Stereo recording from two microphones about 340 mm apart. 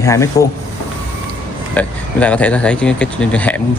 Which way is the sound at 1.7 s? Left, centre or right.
Centre.